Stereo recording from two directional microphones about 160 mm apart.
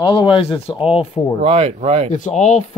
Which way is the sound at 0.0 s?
25° left (ahead or behind).